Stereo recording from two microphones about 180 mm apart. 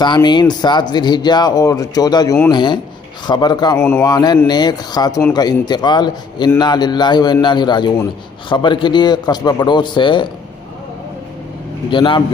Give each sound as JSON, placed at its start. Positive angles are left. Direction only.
{"t": 0.0, "sound": "speech", "side_deg": 25}
{"t": 3.8, "sound": "speech", "side_deg": 10}
{"t": 4.1, "sound": "speech", "side_deg": 20}
{"t": 11.9, "sound": "speech", "side_deg": 30}